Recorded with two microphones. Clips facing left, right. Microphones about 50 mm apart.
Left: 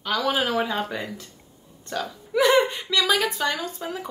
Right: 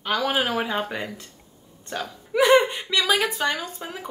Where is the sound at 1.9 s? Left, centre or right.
Right.